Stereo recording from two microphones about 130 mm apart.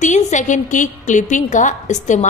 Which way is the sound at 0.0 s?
70° left (ahead or behind).